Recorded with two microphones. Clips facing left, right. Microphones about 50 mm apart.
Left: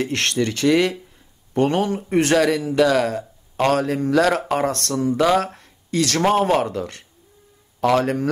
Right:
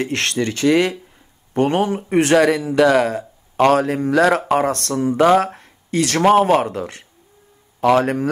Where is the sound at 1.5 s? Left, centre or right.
Right.